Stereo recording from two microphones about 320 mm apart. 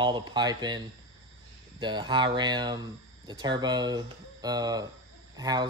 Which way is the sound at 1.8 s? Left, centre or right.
Centre.